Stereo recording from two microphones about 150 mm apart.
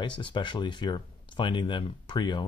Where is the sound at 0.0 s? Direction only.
30° left (ahead or behind).